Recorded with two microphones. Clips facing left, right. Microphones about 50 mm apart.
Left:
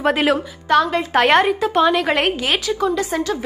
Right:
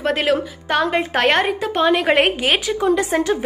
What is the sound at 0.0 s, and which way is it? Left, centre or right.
Speech, centre.